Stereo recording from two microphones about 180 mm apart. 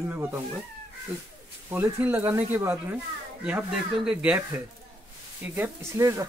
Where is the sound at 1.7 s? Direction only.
10° right (ahead or behind).